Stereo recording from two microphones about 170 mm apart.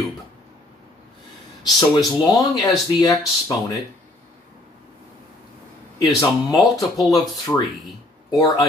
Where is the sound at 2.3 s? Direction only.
20° left (ahead or behind).